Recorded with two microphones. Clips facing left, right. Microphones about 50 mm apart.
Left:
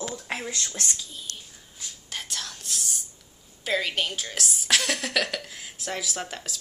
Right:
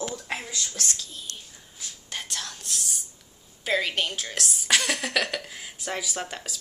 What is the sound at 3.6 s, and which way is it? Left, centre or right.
Speech, centre.